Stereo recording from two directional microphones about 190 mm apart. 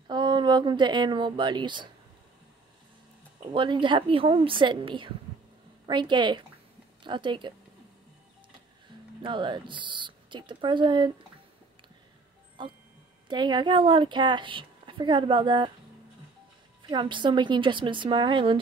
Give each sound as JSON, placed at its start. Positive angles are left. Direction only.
{"t": 0.1, "sound": "speech", "side_deg": -25}
{"t": 3.5, "sound": "a woman's voice", "side_deg": -25}
{"t": 9.2, "sound": "a woman's voice", "side_deg": -25}
{"t": 12.6, "sound": "a woman's voice", "side_deg": -25}
{"t": 16.8, "sound": "a woman's voice", "side_deg": -25}